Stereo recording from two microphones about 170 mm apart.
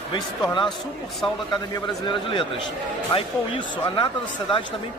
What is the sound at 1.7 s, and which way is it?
Speech, 30° left (ahead or behind).